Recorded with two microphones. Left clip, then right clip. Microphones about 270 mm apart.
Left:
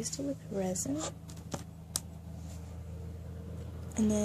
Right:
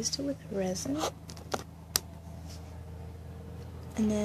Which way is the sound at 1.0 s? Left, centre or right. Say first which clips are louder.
Right 6 dB; right.